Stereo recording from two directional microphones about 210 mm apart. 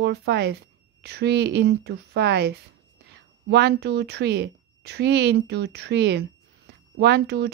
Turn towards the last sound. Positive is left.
turn(degrees=-50)  # may be behind; listen again after turning